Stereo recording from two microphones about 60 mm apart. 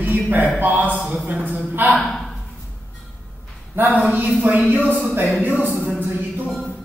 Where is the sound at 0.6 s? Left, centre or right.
Right.